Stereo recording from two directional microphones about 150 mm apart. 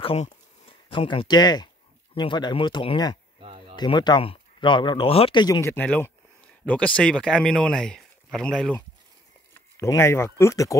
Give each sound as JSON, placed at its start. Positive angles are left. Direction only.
{"t": 0.0, "sound": "a sound", "side_deg": 40}
{"t": 2.1, "sound": "speech", "side_deg": 30}
{"t": 3.3, "sound": "a sound", "side_deg": -35}
{"t": 3.7, "sound": "speech", "side_deg": 30}
{"t": 5.6, "sound": "speech", "side_deg": 15}
{"t": 9.5, "sound": "speech", "side_deg": 20}